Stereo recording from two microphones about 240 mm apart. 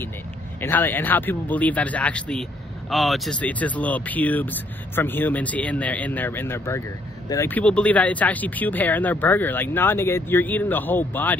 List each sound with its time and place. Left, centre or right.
0.6 s speech: centre